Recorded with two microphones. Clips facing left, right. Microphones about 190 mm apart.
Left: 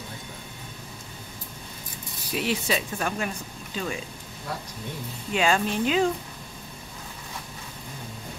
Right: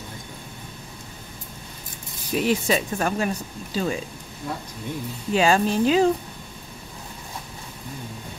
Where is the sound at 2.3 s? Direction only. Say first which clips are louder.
Right 5 dB; 45° right (ahead or behind).